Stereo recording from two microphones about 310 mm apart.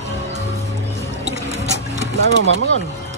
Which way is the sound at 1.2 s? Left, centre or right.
Right.